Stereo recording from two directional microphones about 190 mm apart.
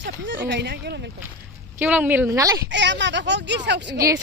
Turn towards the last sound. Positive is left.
turn(degrees=-15)  # may be behind; listen again after turning